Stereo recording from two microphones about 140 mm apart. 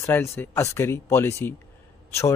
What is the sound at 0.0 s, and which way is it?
Speech, 15° left (ahead or behind).